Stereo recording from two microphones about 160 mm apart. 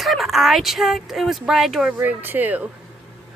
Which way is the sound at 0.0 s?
Centre (ahead or behind).